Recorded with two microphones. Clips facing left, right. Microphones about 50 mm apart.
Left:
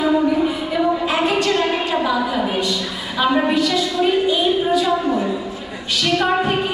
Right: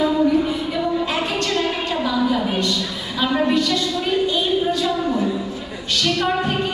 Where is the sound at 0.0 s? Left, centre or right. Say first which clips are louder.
Left 1 dB; centre.